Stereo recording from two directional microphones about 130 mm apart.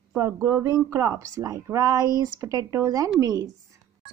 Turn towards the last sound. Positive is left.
turn(degrees=-30)  # may be behind; listen again after turning